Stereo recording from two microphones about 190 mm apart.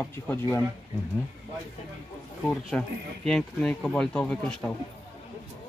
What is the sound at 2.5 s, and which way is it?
Speech, 5° left (ahead or behind).